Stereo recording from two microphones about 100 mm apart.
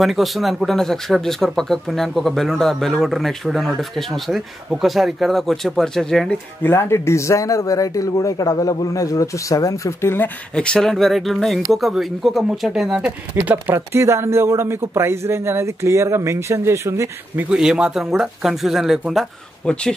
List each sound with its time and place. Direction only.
0.0 s speech: centre (ahead or behind)
6.6 s speech: 25° left (ahead or behind)
10.5 s speech: 10° left (ahead or behind); by 13.1 s 5° right (ahead or behind)
13.4 s speech: 20° right (ahead or behind)
17.5 s speech: 5° right (ahead or behind)
19.6 s speech: 10° left (ahead or behind)